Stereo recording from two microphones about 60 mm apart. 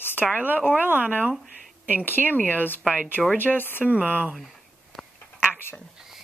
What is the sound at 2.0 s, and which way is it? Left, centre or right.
Speech, left.